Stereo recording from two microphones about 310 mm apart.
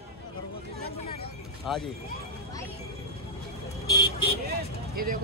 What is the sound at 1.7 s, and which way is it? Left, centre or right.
Speech, centre.